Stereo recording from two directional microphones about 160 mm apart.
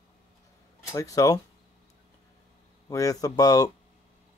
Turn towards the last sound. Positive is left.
turn(degrees=20)  # may be behind; listen again after turning